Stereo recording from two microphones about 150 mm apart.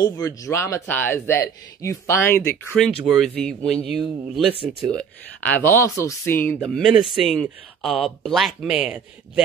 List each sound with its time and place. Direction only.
0.0 s speech: 20° left (ahead or behind)
2.8 s speech: centre (ahead or behind)
4.9 s speech: 10° left (ahead or behind); by 9.4 s 5° right (ahead or behind)